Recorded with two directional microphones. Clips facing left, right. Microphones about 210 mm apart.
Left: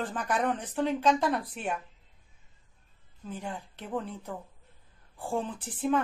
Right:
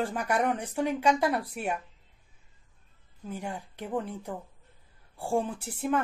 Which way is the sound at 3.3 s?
10° right (ahead or behind).